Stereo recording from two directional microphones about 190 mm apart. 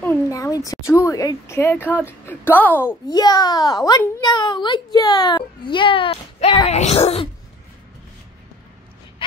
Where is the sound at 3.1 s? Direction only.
20° left (ahead or behind).